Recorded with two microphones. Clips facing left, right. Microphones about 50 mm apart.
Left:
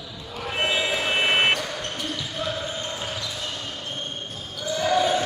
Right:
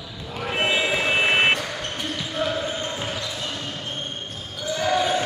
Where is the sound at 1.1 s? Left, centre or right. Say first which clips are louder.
Right 1 dB; centre.